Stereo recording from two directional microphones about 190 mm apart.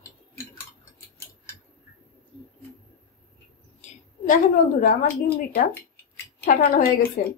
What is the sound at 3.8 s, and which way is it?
A woman's voice, 45° left (ahead or behind).